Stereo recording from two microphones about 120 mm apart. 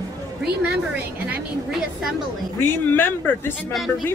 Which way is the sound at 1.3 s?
5° right (ahead or behind).